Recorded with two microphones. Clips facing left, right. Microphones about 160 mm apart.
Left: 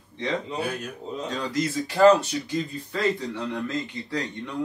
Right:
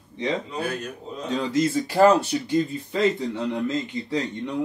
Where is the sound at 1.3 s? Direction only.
25° right (ahead or behind).